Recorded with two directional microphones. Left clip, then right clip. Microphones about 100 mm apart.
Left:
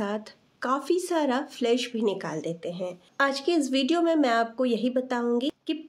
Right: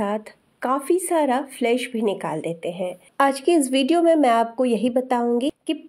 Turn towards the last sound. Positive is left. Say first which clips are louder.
# right 5 dB
turn(degrees=-50)  # may be behind; listen again after turning